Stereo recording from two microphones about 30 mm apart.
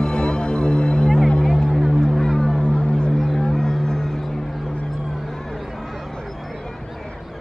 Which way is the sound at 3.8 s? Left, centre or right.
Centre.